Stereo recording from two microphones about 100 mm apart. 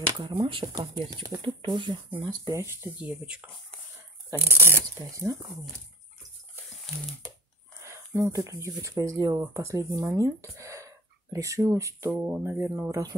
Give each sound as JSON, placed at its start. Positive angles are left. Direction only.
{"t": 0.4, "sound": "speech", "side_deg": -50}
{"t": 2.2, "sound": "speech", "side_deg": -40}
{"t": 2.6, "sound": "speech", "side_deg": -25}
{"t": 3.0, "sound": "speech", "side_deg": -10}
{"t": 4.4, "sound": "speech", "side_deg": -20}
{"t": 4.9, "sound": "speech", "side_deg": -40}
{"t": 7.8, "sound": "speech", "side_deg": -30}
{"t": 12.1, "sound": "speech", "side_deg": -20}